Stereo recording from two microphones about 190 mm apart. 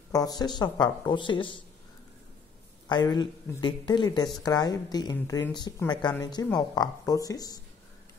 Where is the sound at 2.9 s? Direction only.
20° left (ahead or behind).